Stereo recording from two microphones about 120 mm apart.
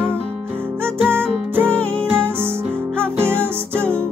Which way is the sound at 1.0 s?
20° right (ahead or behind).